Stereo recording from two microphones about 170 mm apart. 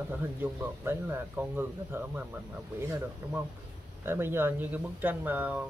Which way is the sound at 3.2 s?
15° right (ahead or behind).